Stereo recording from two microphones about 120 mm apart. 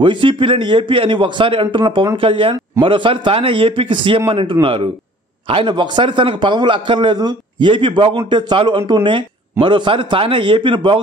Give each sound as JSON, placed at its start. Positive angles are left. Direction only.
{"t": 0.0, "sound": "a man's voice", "side_deg": -45}